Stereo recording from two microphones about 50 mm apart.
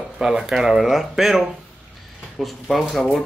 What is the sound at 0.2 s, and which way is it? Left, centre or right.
Speech, centre.